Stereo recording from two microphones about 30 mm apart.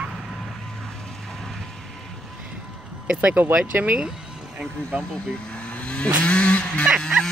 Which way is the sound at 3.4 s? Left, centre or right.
Right.